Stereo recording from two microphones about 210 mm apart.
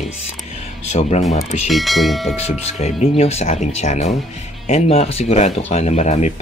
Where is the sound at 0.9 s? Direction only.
30° left (ahead or behind).